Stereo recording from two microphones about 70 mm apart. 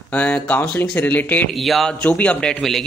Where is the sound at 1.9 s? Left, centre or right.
Centre.